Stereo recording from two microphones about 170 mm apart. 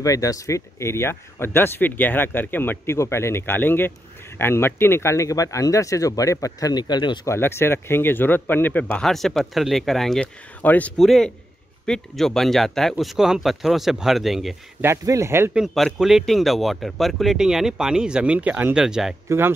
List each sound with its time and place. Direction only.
0.0 s speech: 20° left (ahead or behind)
7.3 s speech: 15° left (ahead or behind)
14.8 s speech: 15° right (ahead or behind)
15.6 s speech: centre (ahead or behind)
19.2 s speech: 15° right (ahead or behind)